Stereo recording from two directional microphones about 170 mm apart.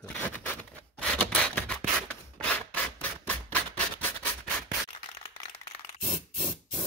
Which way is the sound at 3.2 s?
10° left (ahead or behind).